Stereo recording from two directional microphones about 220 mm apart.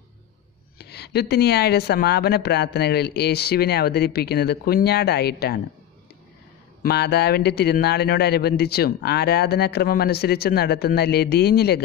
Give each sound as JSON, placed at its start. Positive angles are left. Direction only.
{"t": 0.7, "sound": "speech", "side_deg": 45}
{"t": 6.8, "sound": "speech", "side_deg": 45}